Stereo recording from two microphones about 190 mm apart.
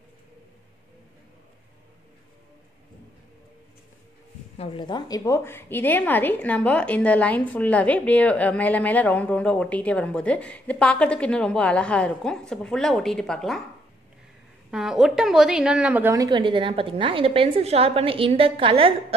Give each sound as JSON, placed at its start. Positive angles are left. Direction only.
{"t": 4.6, "sound": "a woman's voice", "side_deg": 25}
{"t": 14.7, "sound": "a woman's voice", "side_deg": 0}